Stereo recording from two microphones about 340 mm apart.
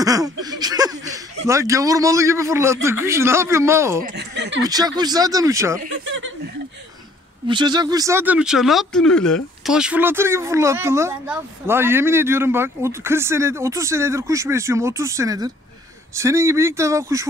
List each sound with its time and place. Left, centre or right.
0.0 s speech: centre
4.0 s chuckle: right
4.6 s speech: centre
5.8 s chuckle: right
7.4 s speech: centre